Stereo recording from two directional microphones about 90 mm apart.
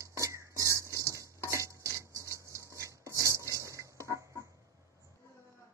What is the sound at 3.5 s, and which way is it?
Chicken, 35° right (ahead or behind).